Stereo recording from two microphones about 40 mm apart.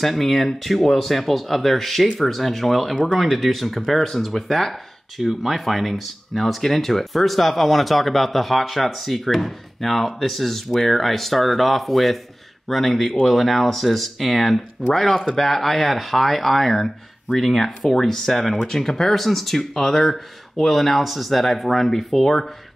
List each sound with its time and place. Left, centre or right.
0.0 s speech: centre